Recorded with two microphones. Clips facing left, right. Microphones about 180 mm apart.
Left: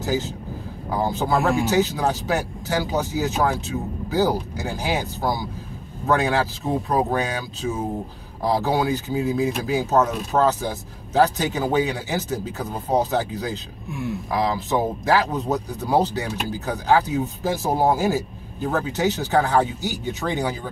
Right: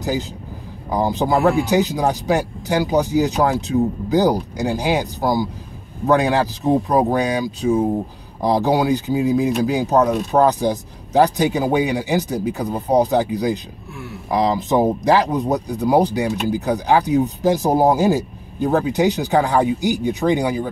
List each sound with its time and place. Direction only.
0.0 s speech: 15° right (ahead or behind)